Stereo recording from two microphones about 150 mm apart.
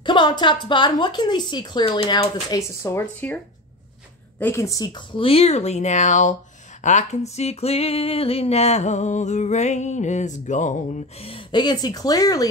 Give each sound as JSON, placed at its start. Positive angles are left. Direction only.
{"t": 0.0, "sound": "a woman's voice", "side_deg": 30}
{"t": 2.5, "sound": "speech", "side_deg": 20}
{"t": 4.4, "sound": "a woman's voice", "side_deg": 15}
{"t": 6.8, "sound": "a sound", "side_deg": 50}
{"t": 11.2, "sound": "a woman's voice", "side_deg": 35}